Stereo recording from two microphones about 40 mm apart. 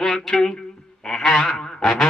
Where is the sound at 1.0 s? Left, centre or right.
Centre.